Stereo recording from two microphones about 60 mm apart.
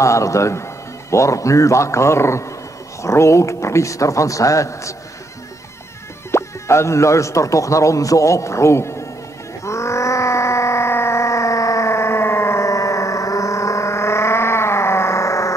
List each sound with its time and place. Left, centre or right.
0.0 s speech: left
6.3 s speech: left
9.7 s a sound: left